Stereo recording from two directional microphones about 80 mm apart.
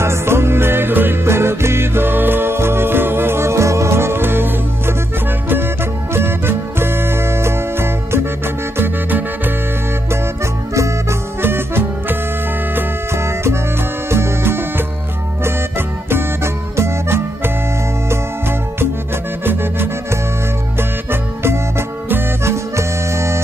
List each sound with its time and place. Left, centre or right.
0.0 s music: right
6.1 s music: right
10.4 s music: right
16.7 s music: right
19.4 s music: right